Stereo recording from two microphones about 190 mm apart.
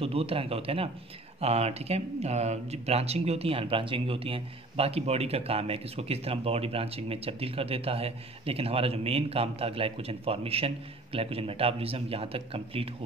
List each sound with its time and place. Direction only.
0.0 s speech: 30° right (ahead or behind)